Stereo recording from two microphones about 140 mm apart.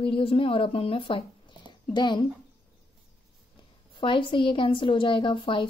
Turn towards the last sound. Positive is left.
turn(degrees=35)  # may be behind; listen again after turning